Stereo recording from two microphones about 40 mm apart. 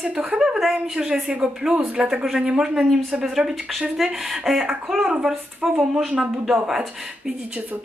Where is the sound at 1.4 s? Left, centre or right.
Centre.